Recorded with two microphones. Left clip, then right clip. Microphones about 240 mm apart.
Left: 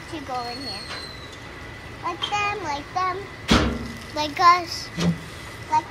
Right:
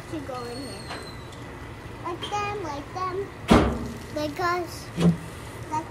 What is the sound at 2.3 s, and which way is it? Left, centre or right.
Child singing, centre.